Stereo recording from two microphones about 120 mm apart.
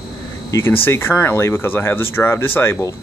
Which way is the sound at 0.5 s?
25° left (ahead or behind).